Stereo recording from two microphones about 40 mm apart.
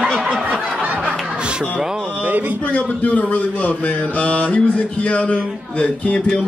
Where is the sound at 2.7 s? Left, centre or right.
Left.